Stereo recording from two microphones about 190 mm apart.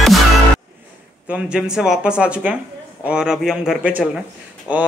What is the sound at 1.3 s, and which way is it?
Speech, 5° right (ahead or behind).